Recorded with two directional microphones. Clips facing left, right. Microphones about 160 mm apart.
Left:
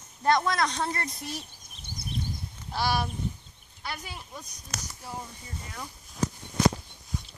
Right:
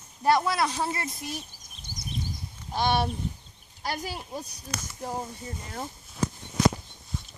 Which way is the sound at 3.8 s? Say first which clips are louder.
Right 6 dB; 35° right (ahead or behind).